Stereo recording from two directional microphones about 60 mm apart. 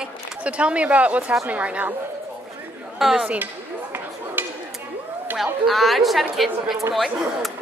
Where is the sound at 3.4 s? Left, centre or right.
Right.